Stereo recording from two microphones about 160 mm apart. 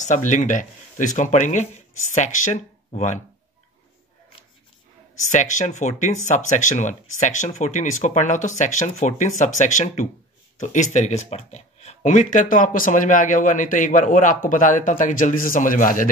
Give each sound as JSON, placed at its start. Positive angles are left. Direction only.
{"t": 0.0, "sound": "speech", "side_deg": 50}
{"t": 5.3, "sound": "speech", "side_deg": 50}